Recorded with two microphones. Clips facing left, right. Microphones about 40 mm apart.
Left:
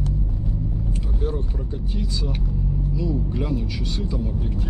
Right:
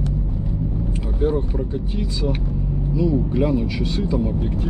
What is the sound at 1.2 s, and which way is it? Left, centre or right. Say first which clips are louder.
Speech: right 10 dB; centre.